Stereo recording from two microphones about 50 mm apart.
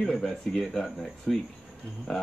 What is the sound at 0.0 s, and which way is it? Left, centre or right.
Speech, centre.